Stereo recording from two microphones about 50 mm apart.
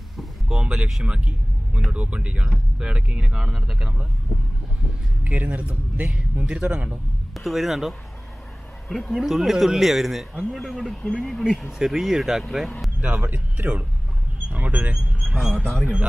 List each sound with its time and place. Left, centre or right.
0.5 s a sound: centre
1.0 s vehicle: right
1.9 s speech: right
5.2 s a man's voice: right
7.3 s speech: centre
11.8 s speech: centre
13.0 s a man's voice: right
15.1 s speech: centre